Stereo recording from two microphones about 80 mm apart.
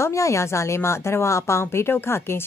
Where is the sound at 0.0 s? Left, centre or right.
Left.